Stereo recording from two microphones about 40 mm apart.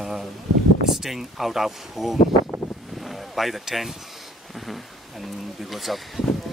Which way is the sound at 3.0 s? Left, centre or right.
Centre.